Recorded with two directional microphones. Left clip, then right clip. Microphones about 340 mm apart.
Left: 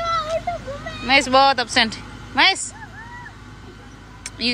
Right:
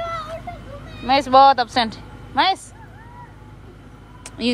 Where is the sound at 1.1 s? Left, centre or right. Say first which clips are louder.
Right 2 dB; centre.